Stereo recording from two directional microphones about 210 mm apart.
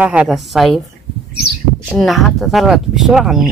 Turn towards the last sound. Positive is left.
turn(degrees=0)  # may be behind; listen again after turning